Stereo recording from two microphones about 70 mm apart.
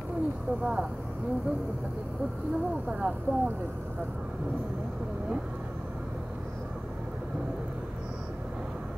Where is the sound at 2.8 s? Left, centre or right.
Right.